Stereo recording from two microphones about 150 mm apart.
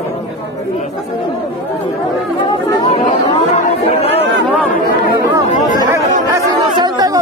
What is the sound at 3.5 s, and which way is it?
Music, 45° left (ahead or behind).